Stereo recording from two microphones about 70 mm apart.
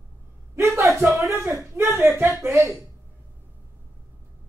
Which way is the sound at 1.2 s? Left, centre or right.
Right.